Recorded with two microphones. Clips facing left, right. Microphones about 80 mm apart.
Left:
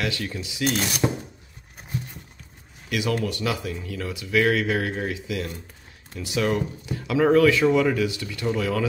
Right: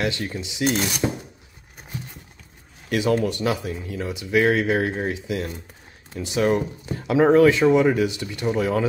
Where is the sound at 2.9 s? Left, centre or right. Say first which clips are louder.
Right 4 dB; right.